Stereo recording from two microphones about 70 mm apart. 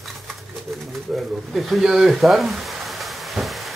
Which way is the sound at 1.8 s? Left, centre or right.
Centre.